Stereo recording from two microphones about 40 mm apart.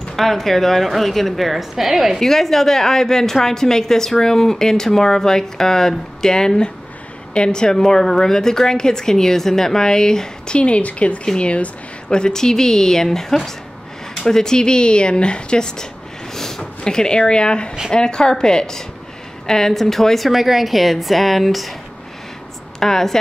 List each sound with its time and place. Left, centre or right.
0.1 s a woman's voice: centre
2.1 s a woman's voice: centre
22.8 s a woman's voice: centre